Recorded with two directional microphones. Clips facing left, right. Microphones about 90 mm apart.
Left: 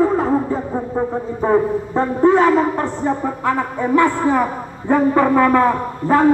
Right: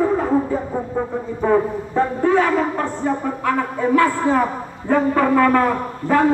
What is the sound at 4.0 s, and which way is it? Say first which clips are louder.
Brass instrument: left 2 dB; 15° left (ahead or behind).